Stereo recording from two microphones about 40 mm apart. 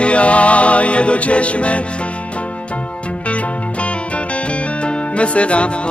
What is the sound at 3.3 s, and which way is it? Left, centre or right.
Music, left.